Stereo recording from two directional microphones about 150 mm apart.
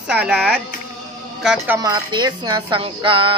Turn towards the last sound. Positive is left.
turn(degrees=-35)  # may be behind; listen again after turning